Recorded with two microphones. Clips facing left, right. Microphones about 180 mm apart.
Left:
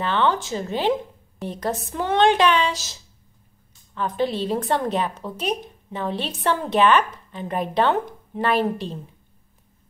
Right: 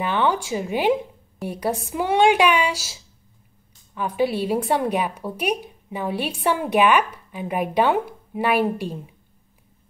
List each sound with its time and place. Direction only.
0.0 s a woman's voice: 10° right (ahead or behind)